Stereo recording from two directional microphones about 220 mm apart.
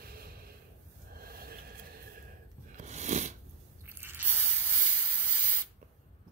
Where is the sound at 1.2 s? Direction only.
45° right (ahead or behind).